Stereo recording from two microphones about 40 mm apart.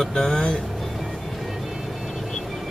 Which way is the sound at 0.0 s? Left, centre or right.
Centre.